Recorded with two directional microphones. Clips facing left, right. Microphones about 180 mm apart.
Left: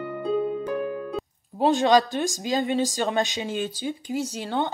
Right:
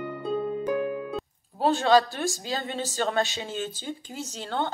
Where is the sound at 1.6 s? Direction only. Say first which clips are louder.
Left 2 dB; 15° left (ahead or behind).